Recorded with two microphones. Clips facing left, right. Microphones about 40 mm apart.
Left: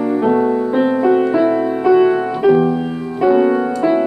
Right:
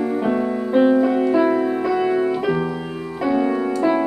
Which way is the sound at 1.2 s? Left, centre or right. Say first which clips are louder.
Left 2 dB; centre.